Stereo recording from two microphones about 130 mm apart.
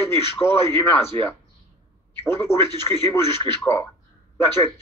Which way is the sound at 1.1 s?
50° right (ahead or behind).